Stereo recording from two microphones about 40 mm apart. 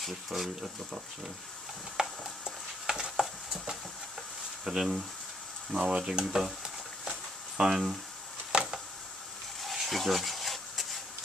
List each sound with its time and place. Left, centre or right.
0.0 s speech: centre
2.0 s a sound: centre
4.6 s speech: centre
6.2 s speech: centre
6.6 s a sound: centre
9.6 s stir: centre